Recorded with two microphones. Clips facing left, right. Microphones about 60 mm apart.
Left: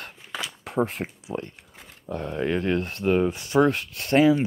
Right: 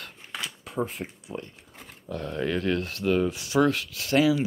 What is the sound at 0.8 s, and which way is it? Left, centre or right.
Speech, left.